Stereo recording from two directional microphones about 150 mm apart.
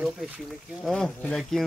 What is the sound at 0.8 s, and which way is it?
Speech, 5° left (ahead or behind).